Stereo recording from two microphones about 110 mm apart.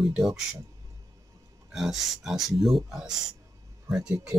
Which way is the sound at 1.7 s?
Centre (ahead or behind).